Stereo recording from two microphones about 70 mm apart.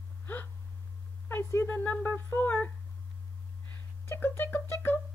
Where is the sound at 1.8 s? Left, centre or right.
Left.